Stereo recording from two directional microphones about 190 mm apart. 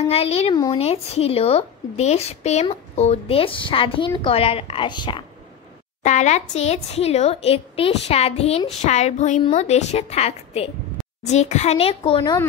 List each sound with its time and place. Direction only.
0.1 s a woman's voice: 30° left (ahead or behind)
6.0 s a woman's voice: 40° left (ahead or behind)